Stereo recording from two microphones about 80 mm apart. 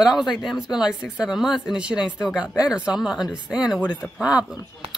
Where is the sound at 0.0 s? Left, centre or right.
Centre.